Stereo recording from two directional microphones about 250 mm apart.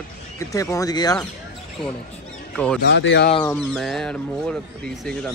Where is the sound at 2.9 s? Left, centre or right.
Left.